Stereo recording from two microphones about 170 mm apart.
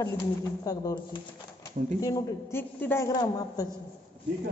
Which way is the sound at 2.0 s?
20° left (ahead or behind).